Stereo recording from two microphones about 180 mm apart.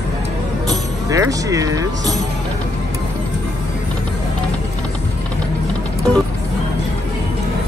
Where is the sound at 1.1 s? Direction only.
20° right (ahead or behind).